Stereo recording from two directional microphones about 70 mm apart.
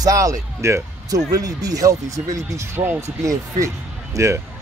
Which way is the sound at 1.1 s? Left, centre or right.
Right.